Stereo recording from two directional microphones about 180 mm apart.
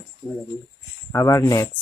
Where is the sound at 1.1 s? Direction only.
15° left (ahead or behind).